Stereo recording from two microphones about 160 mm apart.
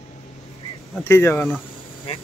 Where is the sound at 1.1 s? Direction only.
15° left (ahead or behind).